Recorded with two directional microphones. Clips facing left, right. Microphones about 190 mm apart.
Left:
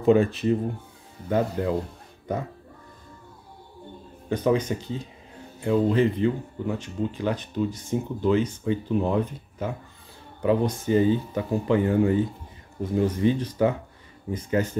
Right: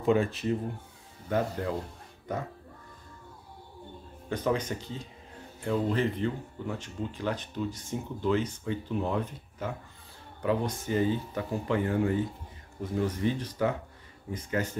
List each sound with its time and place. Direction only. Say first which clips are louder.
0.0 s speech: left 6 dB; 25° left (ahead or behind)
4.3 s speech: left 6 dB; 15° left (ahead or behind)